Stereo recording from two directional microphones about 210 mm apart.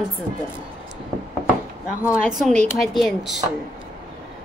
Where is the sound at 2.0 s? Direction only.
5° right (ahead or behind).